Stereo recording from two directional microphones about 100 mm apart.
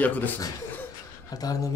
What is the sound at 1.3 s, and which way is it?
Speech, 40° left (ahead or behind).